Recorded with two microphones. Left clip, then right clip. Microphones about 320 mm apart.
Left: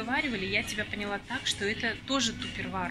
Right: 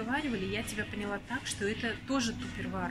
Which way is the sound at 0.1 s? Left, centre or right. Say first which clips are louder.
Left 6 dB; centre.